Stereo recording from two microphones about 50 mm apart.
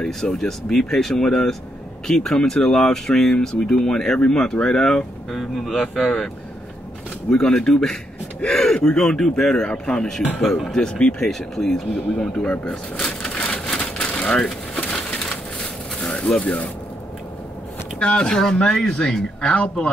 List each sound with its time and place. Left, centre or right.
0.0 s speech: centre
5.3 s speech: centre
7.2 s speech: centre
8.7 s speech: left
13.0 s a sound: centre
13.4 s a sound: left
15.0 s crushing: left
17.9 s speech: centre